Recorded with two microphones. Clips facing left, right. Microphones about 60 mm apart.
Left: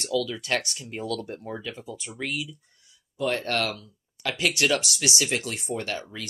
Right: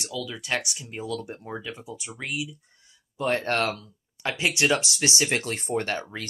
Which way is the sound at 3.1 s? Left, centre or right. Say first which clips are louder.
Right 1 dB; right.